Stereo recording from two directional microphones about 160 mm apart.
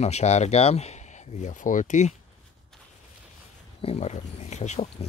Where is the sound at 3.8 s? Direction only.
45° left (ahead or behind).